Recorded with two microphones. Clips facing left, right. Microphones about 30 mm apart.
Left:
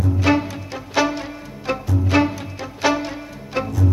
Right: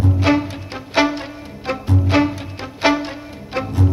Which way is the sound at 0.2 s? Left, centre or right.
Right.